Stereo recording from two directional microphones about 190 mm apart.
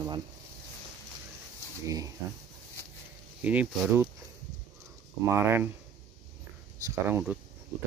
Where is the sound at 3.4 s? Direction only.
10° right (ahead or behind).